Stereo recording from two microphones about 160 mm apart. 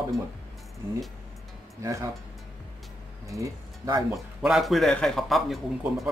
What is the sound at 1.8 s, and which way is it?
Speech, 20° right (ahead or behind).